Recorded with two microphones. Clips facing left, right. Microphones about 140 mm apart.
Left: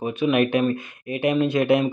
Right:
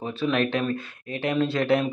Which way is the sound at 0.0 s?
15° left (ahead or behind).